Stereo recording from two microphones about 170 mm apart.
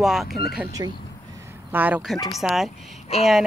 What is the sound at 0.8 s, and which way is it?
Speech, 20° right (ahead or behind).